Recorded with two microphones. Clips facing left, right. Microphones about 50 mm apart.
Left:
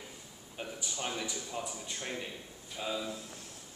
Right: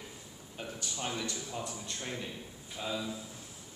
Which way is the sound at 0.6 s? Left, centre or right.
Centre.